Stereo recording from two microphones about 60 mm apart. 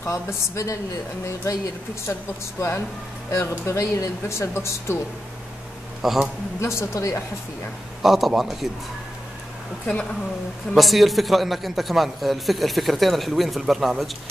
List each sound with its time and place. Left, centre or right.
0.0 s speech: left
2.6 s a woman's voice: left
6.0 s a man's voice: centre
6.6 s a woman's voice: left
8.0 s a man's voice: centre
10.7 s a man's voice: centre